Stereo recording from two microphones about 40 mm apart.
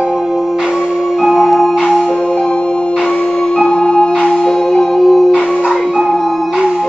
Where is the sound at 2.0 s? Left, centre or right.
Left.